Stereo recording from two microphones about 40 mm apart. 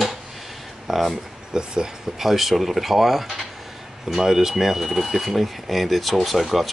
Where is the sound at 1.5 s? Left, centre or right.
Centre.